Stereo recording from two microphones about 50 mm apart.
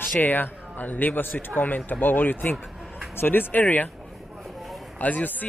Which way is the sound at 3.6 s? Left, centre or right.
Left.